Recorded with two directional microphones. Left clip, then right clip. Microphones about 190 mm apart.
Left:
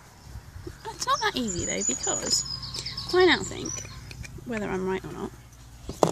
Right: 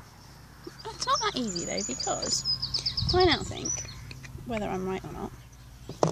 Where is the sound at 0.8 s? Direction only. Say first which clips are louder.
Left 1 dB; 5° left (ahead or behind).